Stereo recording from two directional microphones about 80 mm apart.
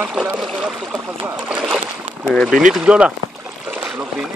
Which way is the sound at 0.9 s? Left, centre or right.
Right.